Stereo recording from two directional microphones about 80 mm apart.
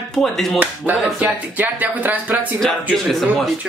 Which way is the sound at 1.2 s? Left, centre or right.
Right.